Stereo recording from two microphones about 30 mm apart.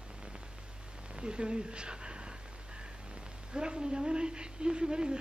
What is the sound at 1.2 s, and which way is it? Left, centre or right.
Speech, right.